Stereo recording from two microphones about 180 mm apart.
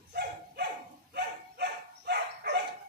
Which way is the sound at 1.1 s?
70° right (ahead or behind).